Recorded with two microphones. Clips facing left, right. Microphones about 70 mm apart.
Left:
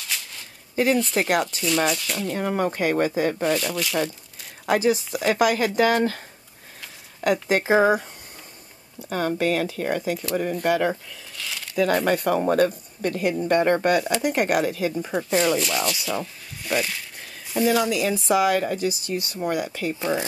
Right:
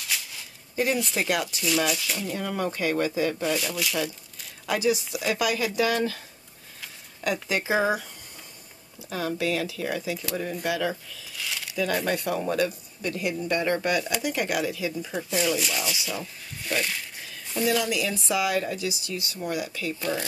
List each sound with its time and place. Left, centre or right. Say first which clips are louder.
0.0 s a sound: even; centre
1.1 s speech: left 5 dB; left
1.5 s speech: left 3 dB; centre
2.3 s speech: left 6 dB; left
3.5 s speech: left 3 dB; centre
4.6 s speech: left 4 dB; left
7.4 s speech: left 6 dB; left
9.4 s speech: left 4 dB; left
11.3 s a sound: even; centre
11.7 s speech: left 6 dB; left
15.2 s speech: left 5 dB; left
15.6 s speech: left 4 dB; centre
17.6 s speech: left 4 dB; left
20.0 s speech: left 4 dB; left